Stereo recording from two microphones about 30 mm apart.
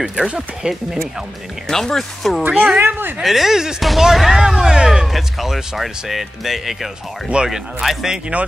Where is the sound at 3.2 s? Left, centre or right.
Centre.